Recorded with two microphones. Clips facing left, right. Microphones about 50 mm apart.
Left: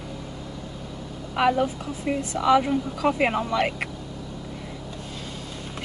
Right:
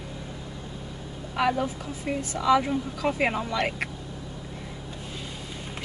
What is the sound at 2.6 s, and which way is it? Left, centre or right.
Speech, centre.